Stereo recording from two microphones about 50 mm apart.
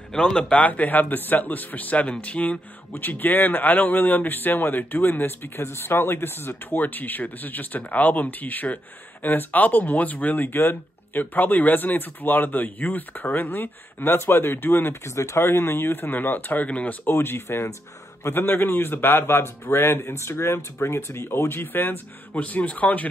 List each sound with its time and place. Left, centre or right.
0.4 s speech: left
2.9 s speech: left
15.0 s speech: left
15.4 s speech: left
17.1 s speech: left
20.2 s speech: left